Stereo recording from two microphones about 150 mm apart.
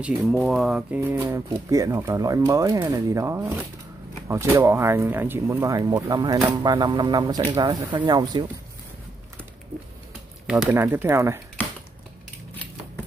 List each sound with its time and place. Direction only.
0.3 s speech: centre (ahead or behind); by 8.5 s 30° right (ahead or behind)
10.4 s speech: 5° right (ahead or behind)